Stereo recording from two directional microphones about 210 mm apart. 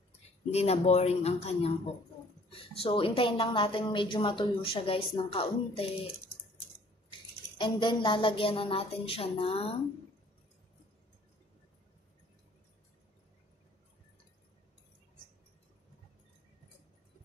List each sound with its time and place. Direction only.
0.5 s a woman's voice: 30° left (ahead or behind)
7.1 s speech: 20° left (ahead or behind)